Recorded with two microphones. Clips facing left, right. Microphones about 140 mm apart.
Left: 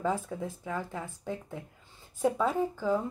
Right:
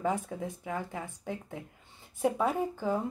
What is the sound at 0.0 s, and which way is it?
Speech, 15° right (ahead or behind).